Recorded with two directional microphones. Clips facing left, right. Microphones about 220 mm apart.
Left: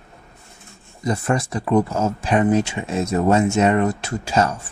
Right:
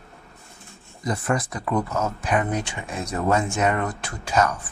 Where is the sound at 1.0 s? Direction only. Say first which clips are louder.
Left 3 dB; 25° left (ahead or behind).